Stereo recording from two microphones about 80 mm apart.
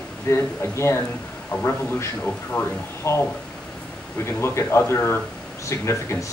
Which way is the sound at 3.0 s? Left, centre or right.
Left.